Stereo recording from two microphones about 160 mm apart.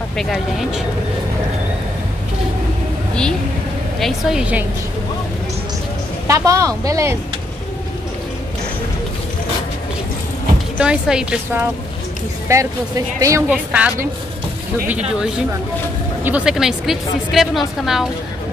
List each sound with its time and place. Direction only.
0.2 s a woman's voice: centre (ahead or behind)
4.0 s a woman's voice: 5° right (ahead or behind)
6.2 s a woman's voice: 20° right (ahead or behind)
10.8 s a woman's voice: 5° right (ahead or behind)
12.4 s speech: 20° right (ahead or behind)
13.5 s a woman's voice: 10° right (ahead or behind)